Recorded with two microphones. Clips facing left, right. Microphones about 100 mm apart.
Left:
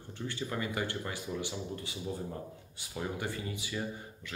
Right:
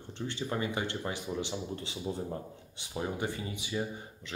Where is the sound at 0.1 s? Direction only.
25° right (ahead or behind).